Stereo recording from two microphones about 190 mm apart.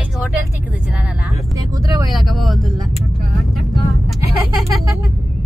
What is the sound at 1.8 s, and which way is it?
Speech, 20° right (ahead or behind).